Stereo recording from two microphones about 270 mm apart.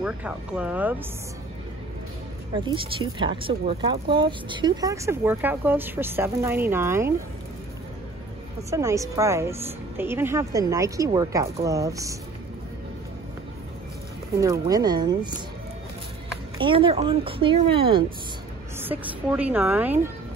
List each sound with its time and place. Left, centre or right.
0.0 s speech: centre
2.5 s speech: centre
8.6 s speech: centre
14.4 s speech: centre
16.5 s speech: centre
18.8 s speech: centre